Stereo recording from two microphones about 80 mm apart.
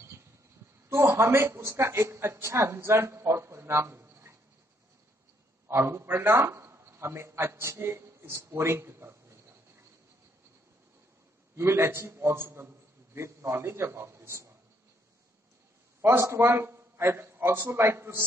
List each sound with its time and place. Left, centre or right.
0.8 s a man's voice: right
5.7 s a man's voice: right
11.5 s a man's voice: right
16.0 s a man's voice: right